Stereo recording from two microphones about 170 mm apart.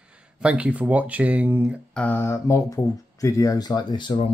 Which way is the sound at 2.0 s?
10° left (ahead or behind).